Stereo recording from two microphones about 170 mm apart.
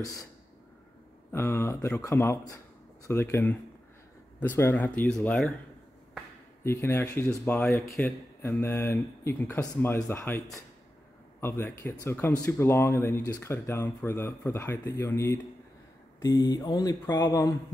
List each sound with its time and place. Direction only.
0.0 s speech: 20° left (ahead or behind)
1.3 s a man's voice: 15° left (ahead or behind)
6.6 s a man's voice: 15° left (ahead or behind)